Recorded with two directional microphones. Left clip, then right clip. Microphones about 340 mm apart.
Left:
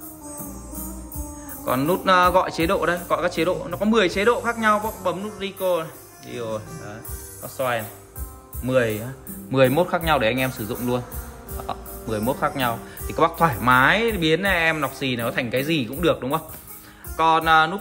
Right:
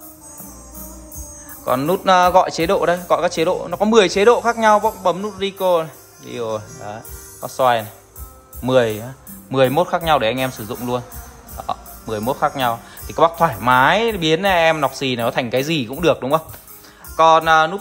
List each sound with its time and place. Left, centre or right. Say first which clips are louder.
1.7 s speech: right 4 dB; centre